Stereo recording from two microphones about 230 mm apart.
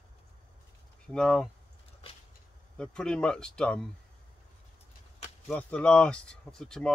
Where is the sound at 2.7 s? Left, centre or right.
Centre.